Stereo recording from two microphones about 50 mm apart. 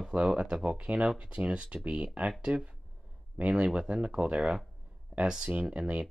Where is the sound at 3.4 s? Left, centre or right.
Right.